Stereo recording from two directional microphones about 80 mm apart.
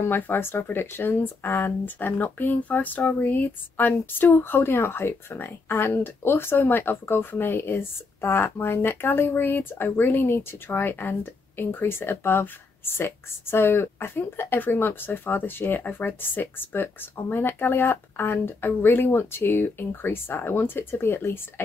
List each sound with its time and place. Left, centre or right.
0.0 s speech: left